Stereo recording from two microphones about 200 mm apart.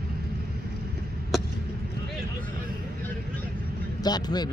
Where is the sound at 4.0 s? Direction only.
20° left (ahead or behind).